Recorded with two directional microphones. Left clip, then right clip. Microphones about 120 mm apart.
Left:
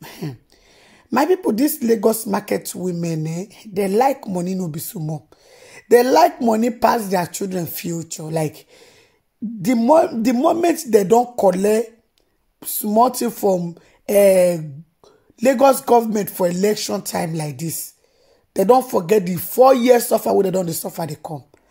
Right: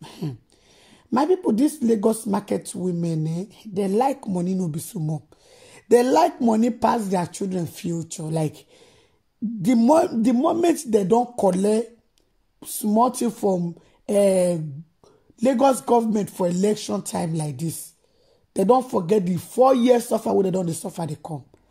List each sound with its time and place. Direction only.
0.0 s a sound: centre (ahead or behind)
1.1 s speech: 5° left (ahead or behind)
9.8 s speech: 15° right (ahead or behind)
10.2 s speech: 5° left (ahead or behind)
10.6 s speech: 5° right (ahead or behind)
10.9 s speech: 5° left (ahead or behind)